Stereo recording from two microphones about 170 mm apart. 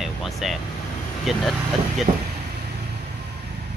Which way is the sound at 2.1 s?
30° right (ahead or behind).